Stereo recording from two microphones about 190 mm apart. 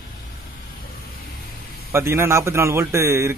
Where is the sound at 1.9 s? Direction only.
15° right (ahead or behind).